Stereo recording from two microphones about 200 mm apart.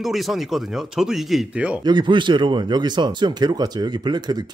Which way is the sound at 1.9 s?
25° right (ahead or behind).